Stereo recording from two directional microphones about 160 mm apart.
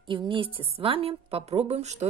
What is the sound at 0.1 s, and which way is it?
A woman's voice, 30° right (ahead or behind).